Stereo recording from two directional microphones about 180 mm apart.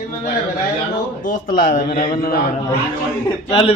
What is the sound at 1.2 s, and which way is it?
A man's voice, 50° left (ahead or behind).